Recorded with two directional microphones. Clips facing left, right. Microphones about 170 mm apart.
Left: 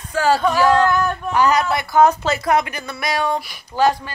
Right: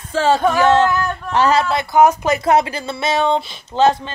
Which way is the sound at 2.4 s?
30° right (ahead or behind).